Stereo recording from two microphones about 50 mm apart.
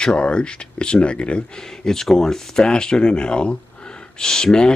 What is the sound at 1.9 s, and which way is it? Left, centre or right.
Speech, centre.